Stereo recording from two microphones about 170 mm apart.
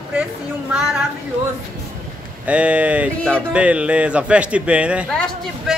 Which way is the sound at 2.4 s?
10° right (ahead or behind).